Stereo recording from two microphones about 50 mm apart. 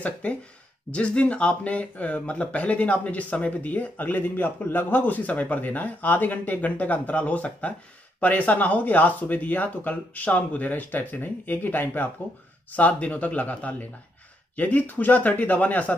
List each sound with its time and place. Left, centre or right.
0.0 s speech: left
12.7 s speech: left